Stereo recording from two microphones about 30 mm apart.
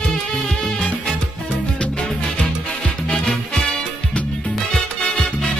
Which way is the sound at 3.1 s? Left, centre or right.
Left.